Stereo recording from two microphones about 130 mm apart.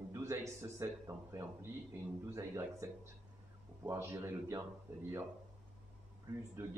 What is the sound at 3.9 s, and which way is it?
Speech, 20° right (ahead or behind).